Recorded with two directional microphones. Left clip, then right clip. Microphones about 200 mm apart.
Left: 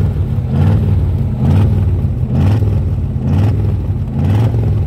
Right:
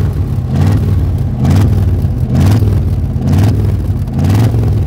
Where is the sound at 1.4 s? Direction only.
25° right (ahead or behind).